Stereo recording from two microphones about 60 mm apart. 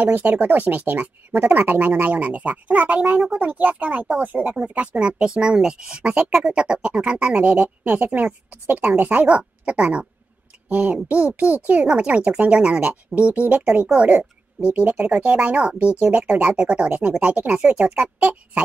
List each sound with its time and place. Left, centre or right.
0.0 s speech: right
9.3 s speech: centre
14.7 s speech: right